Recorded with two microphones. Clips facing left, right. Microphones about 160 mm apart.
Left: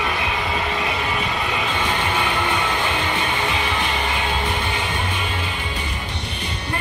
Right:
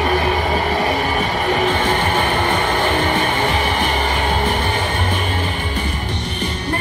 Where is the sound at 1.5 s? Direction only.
50° right (ahead or behind).